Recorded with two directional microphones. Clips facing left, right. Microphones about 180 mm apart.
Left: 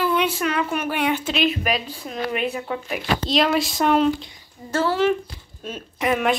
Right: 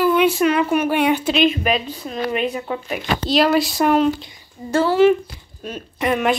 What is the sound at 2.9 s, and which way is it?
Speech, centre (ahead or behind).